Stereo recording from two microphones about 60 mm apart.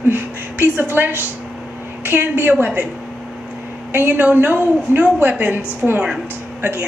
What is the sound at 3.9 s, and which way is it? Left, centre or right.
A woman's voice, right.